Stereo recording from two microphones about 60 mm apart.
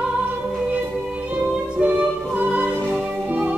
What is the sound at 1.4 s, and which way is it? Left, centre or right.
Music, right.